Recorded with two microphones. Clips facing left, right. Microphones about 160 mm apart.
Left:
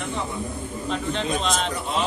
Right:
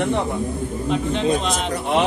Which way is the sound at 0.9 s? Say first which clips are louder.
Right 6 dB; 10° right (ahead or behind).